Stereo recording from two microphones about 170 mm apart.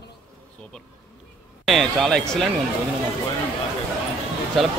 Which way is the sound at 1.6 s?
Centre (ahead or behind).